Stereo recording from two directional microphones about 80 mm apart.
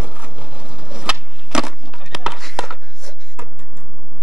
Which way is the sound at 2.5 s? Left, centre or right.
Centre.